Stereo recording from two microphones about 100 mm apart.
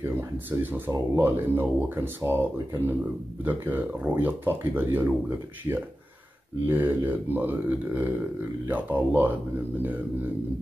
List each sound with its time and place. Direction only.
0.0 s speech: 25° right (ahead or behind)
6.7 s speech: 20° right (ahead or behind)